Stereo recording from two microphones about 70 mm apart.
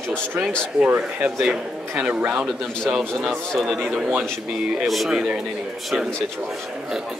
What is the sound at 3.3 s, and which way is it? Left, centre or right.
Speech, centre.